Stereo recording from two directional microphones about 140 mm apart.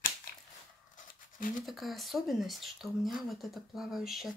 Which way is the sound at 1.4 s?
70° left (ahead or behind).